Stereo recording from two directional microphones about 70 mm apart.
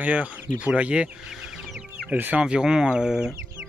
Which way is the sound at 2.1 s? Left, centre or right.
Right.